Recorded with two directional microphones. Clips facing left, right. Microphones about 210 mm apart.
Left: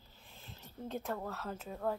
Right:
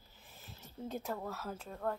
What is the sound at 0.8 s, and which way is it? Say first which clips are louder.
Speech: left 1 dB; centre (ahead or behind).